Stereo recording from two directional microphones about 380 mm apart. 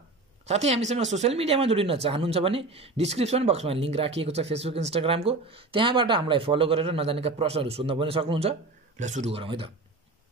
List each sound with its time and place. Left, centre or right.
0.5 s speech: centre